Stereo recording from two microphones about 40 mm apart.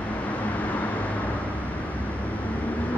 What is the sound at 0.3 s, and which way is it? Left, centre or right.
Vehicle, left.